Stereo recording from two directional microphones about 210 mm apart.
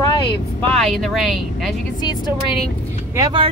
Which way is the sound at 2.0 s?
20° left (ahead or behind).